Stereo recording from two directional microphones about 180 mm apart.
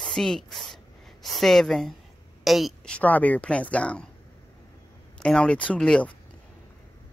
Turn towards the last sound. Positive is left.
turn(degrees=5)  # may be behind; listen again after turning